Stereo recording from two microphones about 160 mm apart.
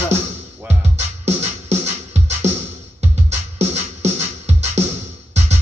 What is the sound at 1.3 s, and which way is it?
Music, 40° right (ahead or behind).